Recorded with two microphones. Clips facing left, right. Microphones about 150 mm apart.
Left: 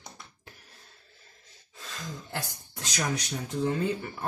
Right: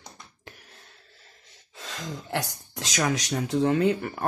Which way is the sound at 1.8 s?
90° right.